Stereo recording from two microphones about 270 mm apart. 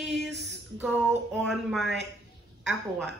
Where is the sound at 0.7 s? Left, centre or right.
Centre.